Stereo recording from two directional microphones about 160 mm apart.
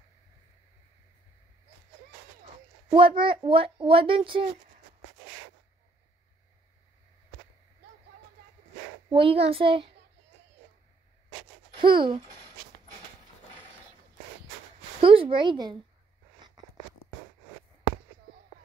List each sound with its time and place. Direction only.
2.9 s speech: 35° right (ahead or behind)
9.1 s speech: 35° right (ahead or behind)
11.7 s speech: 30° right (ahead or behind)
15.0 s speech: 35° right (ahead or behind)